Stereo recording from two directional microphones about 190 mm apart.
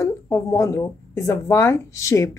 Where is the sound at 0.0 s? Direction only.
15° left (ahead or behind).